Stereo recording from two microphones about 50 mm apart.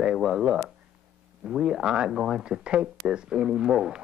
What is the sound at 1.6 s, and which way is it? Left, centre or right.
Speech, centre.